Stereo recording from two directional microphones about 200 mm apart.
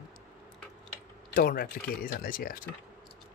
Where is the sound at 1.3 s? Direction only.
45° left (ahead or behind).